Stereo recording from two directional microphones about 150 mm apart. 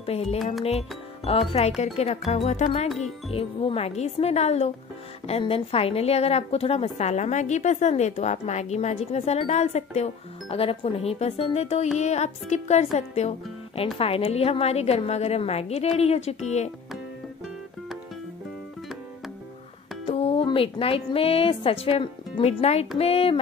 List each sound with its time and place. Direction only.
0.0 s a woman's voice: 45° left (ahead or behind)
20.1 s music: 40° left (ahead or behind)
20.4 s a woman's voice: 35° left (ahead or behind)